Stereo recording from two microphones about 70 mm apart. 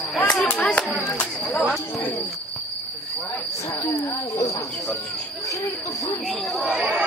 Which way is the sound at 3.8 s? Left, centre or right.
Left.